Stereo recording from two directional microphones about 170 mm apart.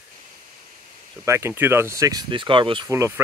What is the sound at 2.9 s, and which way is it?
Speech, 15° right (ahead or behind).